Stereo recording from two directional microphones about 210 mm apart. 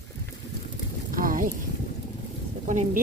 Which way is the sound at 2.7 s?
35° right (ahead or behind).